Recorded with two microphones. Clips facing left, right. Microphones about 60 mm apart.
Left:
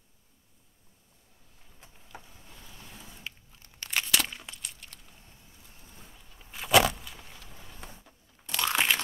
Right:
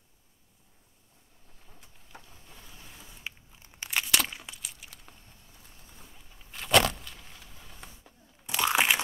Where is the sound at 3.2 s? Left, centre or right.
Centre.